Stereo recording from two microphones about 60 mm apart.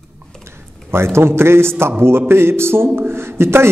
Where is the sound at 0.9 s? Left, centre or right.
Right.